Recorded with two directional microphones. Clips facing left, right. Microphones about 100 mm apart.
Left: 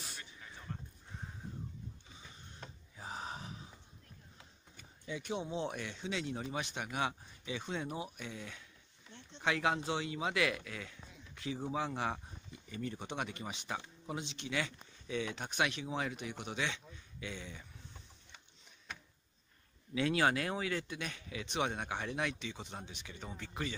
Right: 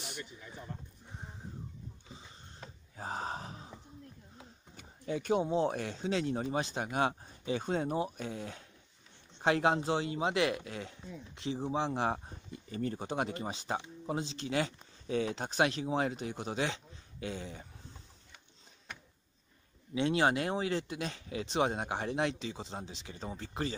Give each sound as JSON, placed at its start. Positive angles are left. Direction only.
{"t": 3.0, "sound": "a sound", "side_deg": -45}
{"t": 4.7, "sound": "speech", "side_deg": -50}
{"t": 12.3, "sound": "speech", "side_deg": -40}
{"t": 19.9, "sound": "speech", "side_deg": -25}